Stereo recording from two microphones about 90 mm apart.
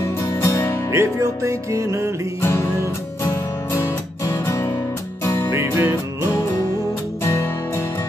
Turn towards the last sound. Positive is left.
turn(degrees=30)  # may be behind; listen again after turning